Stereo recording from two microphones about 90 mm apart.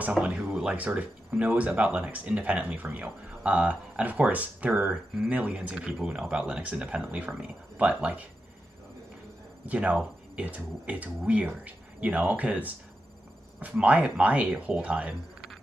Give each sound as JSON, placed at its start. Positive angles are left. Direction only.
{"t": 0.0, "sound": "speech", "side_deg": -15}
{"t": 9.7, "sound": "speech", "side_deg": -15}